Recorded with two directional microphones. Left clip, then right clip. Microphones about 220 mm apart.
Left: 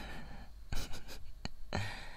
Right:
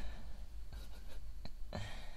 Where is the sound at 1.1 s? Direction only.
45° left (ahead or behind).